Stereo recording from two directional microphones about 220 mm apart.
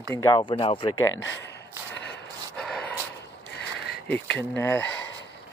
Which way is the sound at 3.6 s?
50° left (ahead or behind).